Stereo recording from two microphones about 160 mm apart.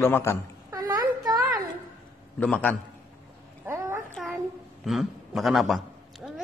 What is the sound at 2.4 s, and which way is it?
Speech, 10° left (ahead or behind).